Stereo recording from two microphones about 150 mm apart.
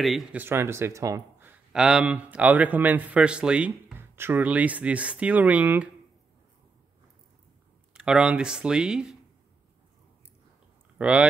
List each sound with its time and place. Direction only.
0.0 s a man's voice: centre (ahead or behind); by 1.2 s 20° right (ahead or behind)
1.4 s a man's voice: 5° right (ahead or behind)
7.9 s speech: 5° right (ahead or behind)
11.0 s speech: 10° right (ahead or behind)